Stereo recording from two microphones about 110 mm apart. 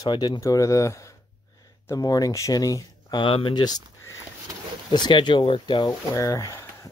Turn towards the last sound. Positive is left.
turn(degrees=30)  # may be behind; listen again after turning